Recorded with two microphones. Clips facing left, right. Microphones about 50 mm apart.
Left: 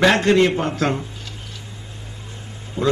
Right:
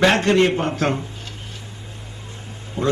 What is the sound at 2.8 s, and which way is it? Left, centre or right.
Speech, right.